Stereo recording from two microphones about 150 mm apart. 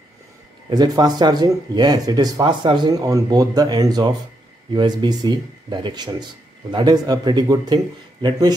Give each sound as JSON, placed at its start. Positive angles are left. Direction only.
{"t": 0.7, "sound": "speech", "side_deg": -25}